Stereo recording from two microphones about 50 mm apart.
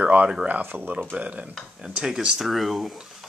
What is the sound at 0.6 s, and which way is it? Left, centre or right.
Speech, right.